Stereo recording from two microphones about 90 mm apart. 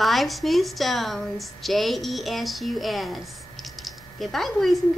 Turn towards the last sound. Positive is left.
turn(degrees=0)  # may be behind; listen again after turning